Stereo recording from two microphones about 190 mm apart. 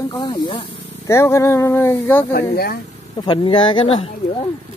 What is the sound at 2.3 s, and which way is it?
Speech, 55° left (ahead or behind).